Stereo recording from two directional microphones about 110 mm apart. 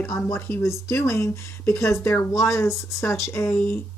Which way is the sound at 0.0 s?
20° left (ahead or behind).